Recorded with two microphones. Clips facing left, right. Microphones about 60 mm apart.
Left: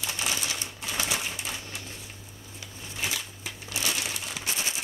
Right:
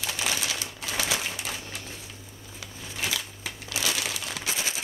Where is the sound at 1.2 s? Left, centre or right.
Right.